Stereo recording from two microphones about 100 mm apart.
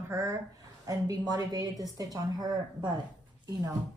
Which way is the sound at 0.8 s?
40° right (ahead or behind).